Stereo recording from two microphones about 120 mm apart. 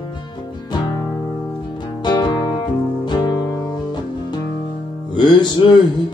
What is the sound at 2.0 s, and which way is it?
Music, 35° left (ahead or behind).